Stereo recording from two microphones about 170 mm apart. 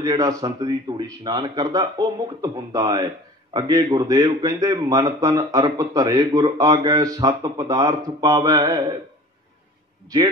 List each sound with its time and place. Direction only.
0.0 s speech: 20° right (ahead or behind)
10.0 s a man's voice: 25° right (ahead or behind)